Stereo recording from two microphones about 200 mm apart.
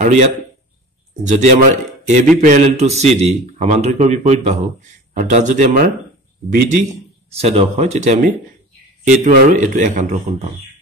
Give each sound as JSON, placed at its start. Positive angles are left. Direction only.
{"t": 0.0, "sound": "a man's voice", "side_deg": -35}
{"t": 2.0, "sound": "speech", "side_deg": -35}